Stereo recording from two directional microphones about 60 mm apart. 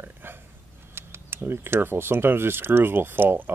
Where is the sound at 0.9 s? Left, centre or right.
Right.